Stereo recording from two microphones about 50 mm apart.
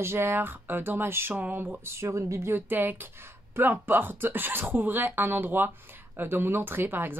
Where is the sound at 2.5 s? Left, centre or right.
Right.